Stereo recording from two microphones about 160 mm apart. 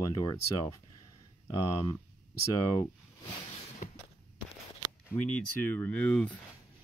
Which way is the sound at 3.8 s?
55° left (ahead or behind).